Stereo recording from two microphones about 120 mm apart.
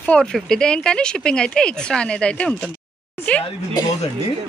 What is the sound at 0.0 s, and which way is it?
Speech, 5° left (ahead or behind).